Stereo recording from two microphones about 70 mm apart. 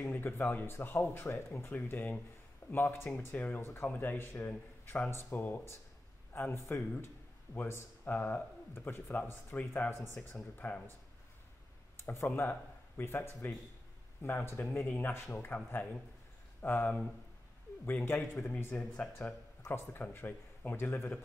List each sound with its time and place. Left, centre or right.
0.0 s a man's voice: left
7.6 s speech: left
10.6 s a man's voice: left
12.0 s a man's voice: left
15.2 s speech: left
15.5 s a man's voice: left
19.7 s speech: left